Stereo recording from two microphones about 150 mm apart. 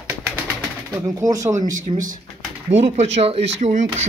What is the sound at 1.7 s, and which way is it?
Speech, 60° right (ahead or behind).